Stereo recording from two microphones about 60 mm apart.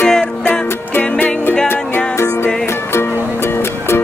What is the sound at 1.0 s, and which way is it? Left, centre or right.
Music, left.